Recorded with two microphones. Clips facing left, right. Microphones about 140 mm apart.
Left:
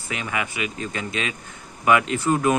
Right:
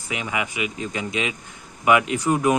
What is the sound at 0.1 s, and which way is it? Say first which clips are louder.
Speech: right 1 dB; 15° right (ahead or behind).